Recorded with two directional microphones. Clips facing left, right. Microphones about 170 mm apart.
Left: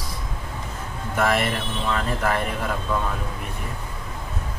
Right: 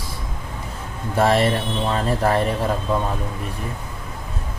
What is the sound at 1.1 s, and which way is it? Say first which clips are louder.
A man's voice: right 5 dB; 30° right (ahead or behind).